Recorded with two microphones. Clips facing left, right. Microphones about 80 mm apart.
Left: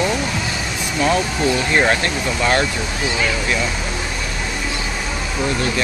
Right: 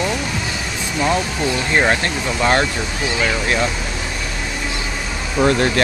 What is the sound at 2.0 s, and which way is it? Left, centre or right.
Speech, right.